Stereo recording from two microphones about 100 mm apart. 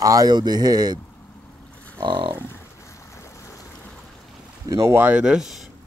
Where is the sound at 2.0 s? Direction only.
55° right (ahead or behind).